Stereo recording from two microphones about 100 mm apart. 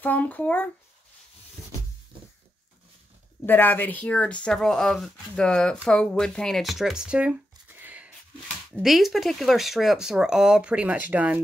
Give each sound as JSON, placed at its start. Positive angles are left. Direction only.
{"t": 0.0, "sound": "speech", "side_deg": 15}
{"t": 3.4, "sound": "speech", "side_deg": 20}
{"t": 8.8, "sound": "speech", "side_deg": 0}